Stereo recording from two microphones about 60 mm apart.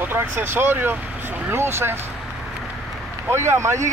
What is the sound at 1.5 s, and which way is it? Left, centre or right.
Speech, right.